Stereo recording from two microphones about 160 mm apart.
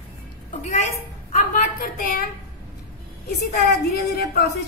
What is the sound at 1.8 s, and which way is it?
Speech, 65° left (ahead or behind).